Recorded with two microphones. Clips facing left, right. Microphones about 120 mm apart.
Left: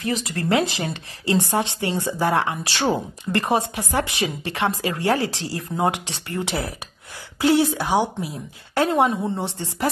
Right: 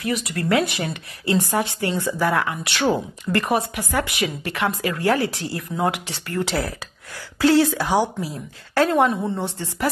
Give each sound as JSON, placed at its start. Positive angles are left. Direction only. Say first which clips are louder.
{"t": 0.0, "sound": "speech", "louder": "even", "side_deg": 30}